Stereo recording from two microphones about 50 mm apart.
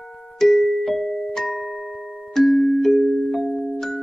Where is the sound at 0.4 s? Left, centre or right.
Centre.